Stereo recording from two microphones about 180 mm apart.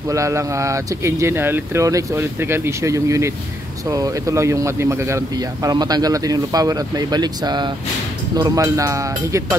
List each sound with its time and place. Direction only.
0.1 s speech: 15° right (ahead or behind)